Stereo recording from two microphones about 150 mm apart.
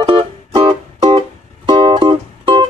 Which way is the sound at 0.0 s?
35° right (ahead or behind).